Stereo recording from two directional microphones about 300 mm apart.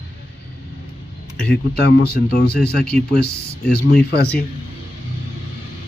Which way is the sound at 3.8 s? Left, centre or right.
Left.